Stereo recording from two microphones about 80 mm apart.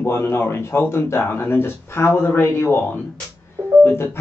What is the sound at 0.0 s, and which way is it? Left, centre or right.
A man's voice, left.